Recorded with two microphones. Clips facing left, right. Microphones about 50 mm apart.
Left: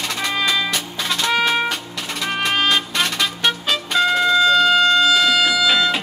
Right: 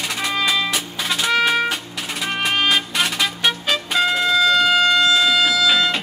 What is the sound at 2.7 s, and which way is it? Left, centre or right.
Music, centre.